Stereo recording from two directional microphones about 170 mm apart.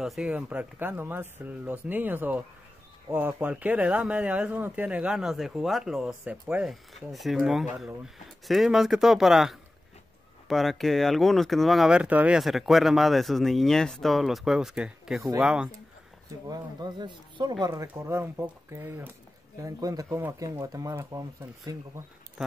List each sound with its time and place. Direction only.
0.0 s speech: centre (ahead or behind)
16.4 s speech: 25° right (ahead or behind)